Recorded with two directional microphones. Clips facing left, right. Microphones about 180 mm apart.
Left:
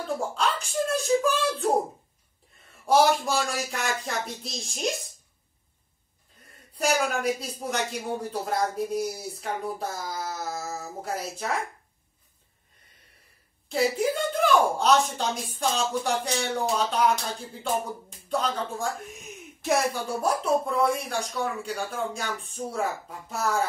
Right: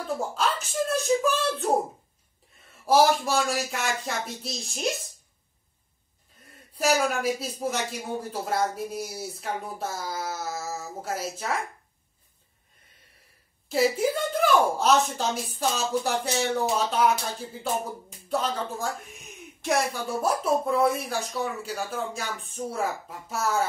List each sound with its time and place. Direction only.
0.3 s speech: 5° right (ahead or behind)
2.9 s speech: centre (ahead or behind)
6.8 s speech: 5° right (ahead or behind)
13.7 s speech: centre (ahead or behind)
18.3 s speech: centre (ahead or behind)